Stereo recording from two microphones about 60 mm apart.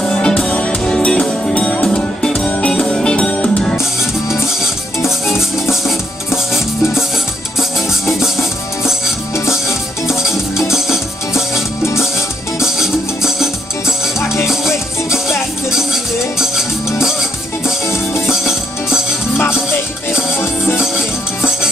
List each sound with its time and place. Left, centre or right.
0.0 s music: centre
0.8 s music: centre
5.2 s music: centre
8.1 s music: centre
12.6 s music: centre
17.6 s music: left
18.3 s music: centre
20.1 s music: left